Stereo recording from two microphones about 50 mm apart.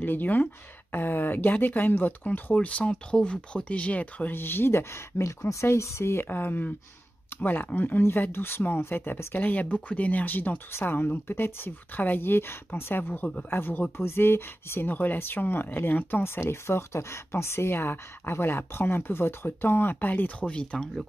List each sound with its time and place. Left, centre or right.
0.0 s speech: left
2.5 s speech: left
4.3 s speech: left
6.3 s speech: left
8.0 s speech: left
10.7 s speech: left
13.2 s speech: left
13.5 s speech: left
16.2 s speech: left; by 21.0 s centre